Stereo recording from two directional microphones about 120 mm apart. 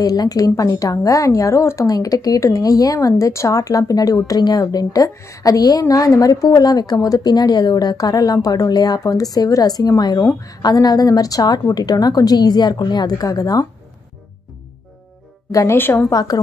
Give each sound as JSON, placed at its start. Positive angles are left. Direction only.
{"t": 0.0, "sound": "speech", "side_deg": 30}
{"t": 15.5, "sound": "a woman's voice", "side_deg": 20}
{"t": 16.1, "sound": "speech", "side_deg": 30}